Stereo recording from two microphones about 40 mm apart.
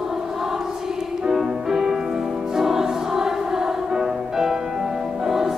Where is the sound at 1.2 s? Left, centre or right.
Centre.